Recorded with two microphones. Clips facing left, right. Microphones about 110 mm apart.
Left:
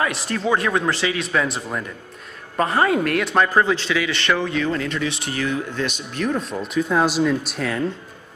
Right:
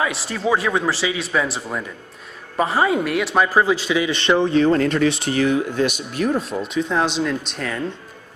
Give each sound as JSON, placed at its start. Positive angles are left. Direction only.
{"t": 0.0, "sound": "speech", "side_deg": 0}
{"t": 4.0, "sound": "speech", "side_deg": -20}
{"t": 4.7, "sound": "speech", "side_deg": -45}
{"t": 5.3, "sound": "speech", "side_deg": -25}
{"t": 5.8, "sound": "speech", "side_deg": -10}